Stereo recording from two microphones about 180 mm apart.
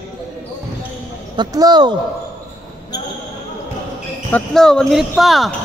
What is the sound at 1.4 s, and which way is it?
Speech, 25° right (ahead or behind).